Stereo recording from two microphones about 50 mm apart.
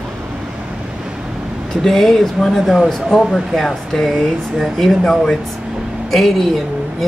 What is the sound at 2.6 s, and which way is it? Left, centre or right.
Speech, centre.